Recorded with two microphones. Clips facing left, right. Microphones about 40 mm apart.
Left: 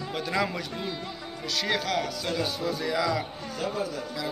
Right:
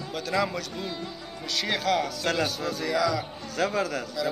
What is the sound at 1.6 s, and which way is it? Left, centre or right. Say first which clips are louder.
Speech: right 2 dB; centre.